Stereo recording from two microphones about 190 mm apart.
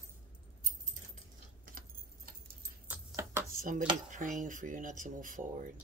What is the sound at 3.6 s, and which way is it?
Speech, 45° right (ahead or behind).